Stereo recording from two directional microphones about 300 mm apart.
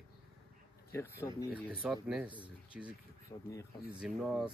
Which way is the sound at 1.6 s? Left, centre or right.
Centre.